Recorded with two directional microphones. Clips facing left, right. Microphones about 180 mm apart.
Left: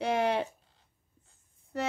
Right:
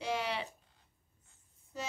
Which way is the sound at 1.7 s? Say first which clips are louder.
Left 9 dB; 60° left (ahead or behind).